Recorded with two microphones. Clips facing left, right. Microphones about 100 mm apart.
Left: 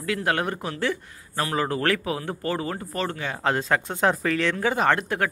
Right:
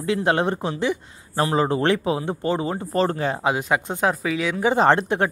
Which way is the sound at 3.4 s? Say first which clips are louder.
Left 3 dB; 15° right (ahead or behind).